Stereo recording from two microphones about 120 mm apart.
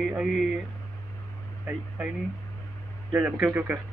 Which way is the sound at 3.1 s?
15° right (ahead or behind).